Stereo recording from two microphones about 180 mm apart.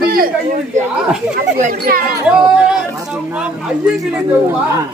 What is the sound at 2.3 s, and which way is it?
Speech, 5° right (ahead or behind).